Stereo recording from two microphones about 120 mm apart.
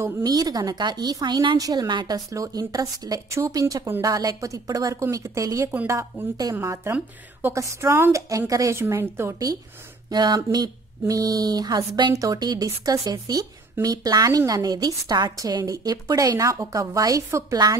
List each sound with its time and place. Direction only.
0.2 s a woman's voice: 35° right (ahead or behind)
10.1 s speech: 35° right (ahead or behind)